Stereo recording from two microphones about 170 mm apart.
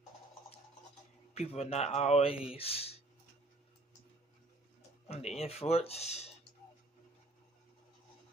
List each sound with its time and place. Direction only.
1.3 s speech: 40° left (ahead or behind)
5.0 s speech: 40° left (ahead or behind)